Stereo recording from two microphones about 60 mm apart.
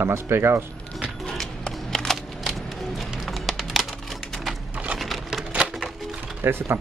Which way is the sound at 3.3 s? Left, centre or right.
Centre.